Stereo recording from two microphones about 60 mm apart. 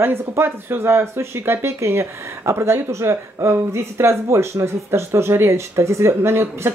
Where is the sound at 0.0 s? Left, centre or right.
Right.